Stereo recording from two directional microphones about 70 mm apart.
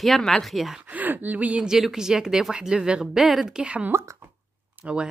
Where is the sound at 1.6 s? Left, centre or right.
Centre.